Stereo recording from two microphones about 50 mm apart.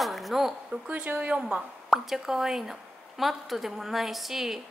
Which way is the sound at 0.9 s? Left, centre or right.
Right.